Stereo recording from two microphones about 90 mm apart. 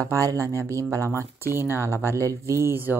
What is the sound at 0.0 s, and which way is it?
Speech, 40° right (ahead or behind).